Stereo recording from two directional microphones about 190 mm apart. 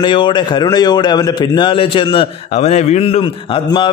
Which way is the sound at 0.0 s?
25° left (ahead or behind).